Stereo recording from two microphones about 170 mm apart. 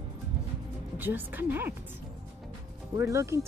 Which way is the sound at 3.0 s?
15° right (ahead or behind).